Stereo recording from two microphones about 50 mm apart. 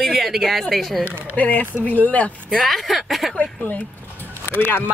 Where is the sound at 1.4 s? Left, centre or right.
Left.